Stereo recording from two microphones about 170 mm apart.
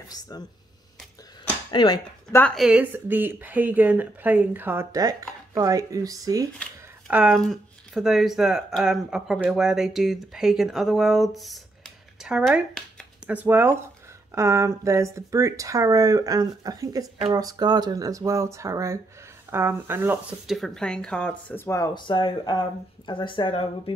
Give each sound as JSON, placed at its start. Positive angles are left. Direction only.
{"t": 1.7, "sound": "speech", "side_deg": 30}
{"t": 2.5, "sound": "speech", "side_deg": -5}
{"t": 7.1, "sound": "speech", "side_deg": -5}
{"t": 13.3, "sound": "speech", "side_deg": -10}
{"t": 20.4, "sound": "speech", "side_deg": 0}